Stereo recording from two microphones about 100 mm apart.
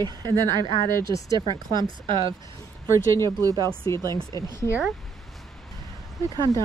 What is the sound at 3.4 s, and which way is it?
Speech, 35° right (ahead or behind).